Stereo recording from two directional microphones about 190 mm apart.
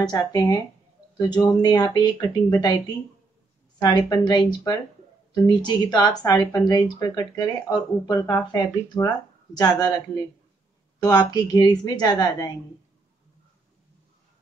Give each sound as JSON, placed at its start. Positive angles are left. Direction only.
{"t": 0.2, "sound": "speech", "side_deg": 20}
{"t": 3.8, "sound": "speech", "side_deg": 20}